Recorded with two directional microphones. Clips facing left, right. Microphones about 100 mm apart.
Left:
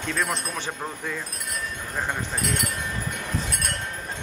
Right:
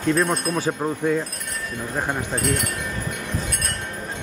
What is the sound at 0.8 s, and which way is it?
Speech, 25° right (ahead or behind).